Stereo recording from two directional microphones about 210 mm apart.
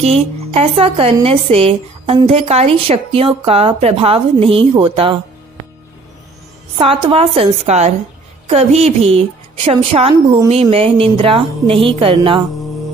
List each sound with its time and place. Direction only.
0.0 s a woman's voice: 30° right (ahead or behind)
6.8 s a woman's voice: 25° right (ahead or behind)